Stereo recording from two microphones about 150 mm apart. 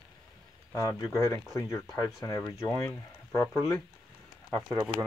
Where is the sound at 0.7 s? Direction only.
25° left (ahead or behind).